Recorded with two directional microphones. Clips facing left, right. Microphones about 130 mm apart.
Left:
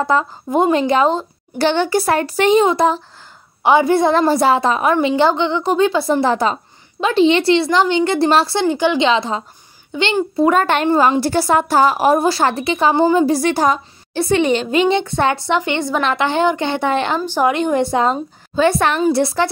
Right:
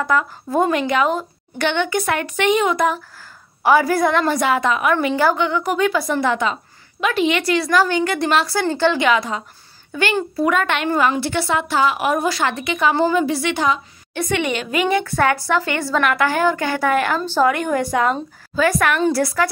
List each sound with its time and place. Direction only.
0.0 s a woman's voice: 25° left (ahead or behind)
8.6 s a woman's voice: 15° left (ahead or behind)
10.4 s a woman's voice: 35° left (ahead or behind)
11.1 s a woman's voice: 40° left (ahead or behind)
12.9 s a woman's voice: 20° left (ahead or behind)
13.2 s a woman's voice: 40° left (ahead or behind)